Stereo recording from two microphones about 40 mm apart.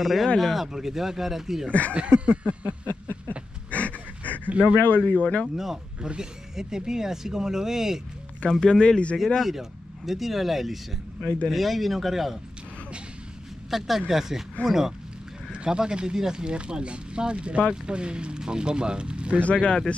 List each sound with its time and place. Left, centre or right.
0.0 s speech: centre
1.7 s speech: left
2.1 s a sound: right
3.7 s a sound: left
4.5 s a sound: right
4.9 s speech: left
5.9 s speech: right
6.5 s speech: centre
8.5 s speech: centre
9.2 s speech: centre
13.7 s speech: centre
15.5 s speech: right
19.4 s speech: left